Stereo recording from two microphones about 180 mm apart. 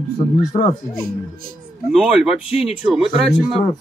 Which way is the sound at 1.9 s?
Centre (ahead or behind).